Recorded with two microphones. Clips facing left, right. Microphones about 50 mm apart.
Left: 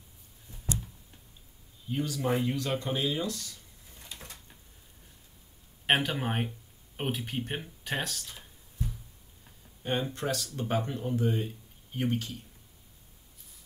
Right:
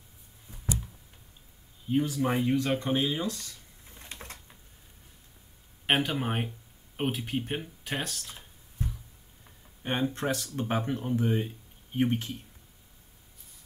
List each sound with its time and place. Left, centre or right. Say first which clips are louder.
1.9 s speech: right 3 dB; centre
2.8 s a sound: right 2 dB; right
5.9 s speech: even; centre
9.8 s speech: right 2 dB; right